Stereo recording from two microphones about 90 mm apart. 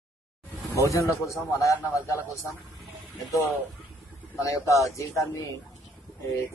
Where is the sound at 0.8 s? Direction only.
35° left (ahead or behind).